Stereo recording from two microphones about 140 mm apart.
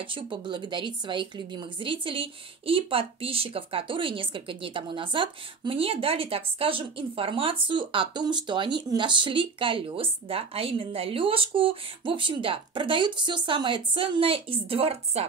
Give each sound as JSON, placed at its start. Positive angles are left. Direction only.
{"t": 0.0, "sound": "a woman's voice", "side_deg": -40}